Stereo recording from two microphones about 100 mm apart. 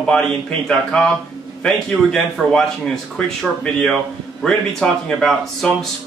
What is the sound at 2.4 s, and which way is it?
Speech, centre (ahead or behind).